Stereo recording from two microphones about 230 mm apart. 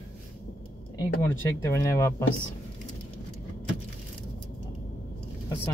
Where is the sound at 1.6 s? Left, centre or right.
Centre.